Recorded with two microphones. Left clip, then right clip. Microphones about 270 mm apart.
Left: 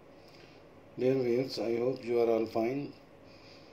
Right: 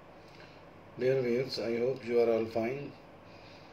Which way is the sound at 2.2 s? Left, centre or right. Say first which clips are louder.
Left 2 dB; left.